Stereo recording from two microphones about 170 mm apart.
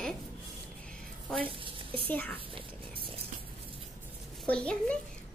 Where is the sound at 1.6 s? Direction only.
30° right (ahead or behind).